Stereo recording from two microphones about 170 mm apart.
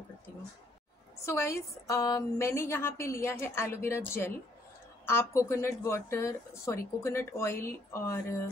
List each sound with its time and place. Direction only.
1.2 s a woman's voice: 15° left (ahead or behind)